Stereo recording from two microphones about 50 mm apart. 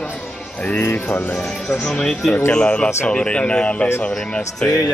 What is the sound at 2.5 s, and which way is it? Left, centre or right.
Speech, left.